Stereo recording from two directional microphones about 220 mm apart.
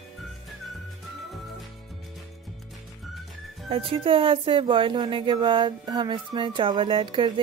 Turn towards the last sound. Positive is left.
turn(degrees=-25)  # may be behind; listen again after turning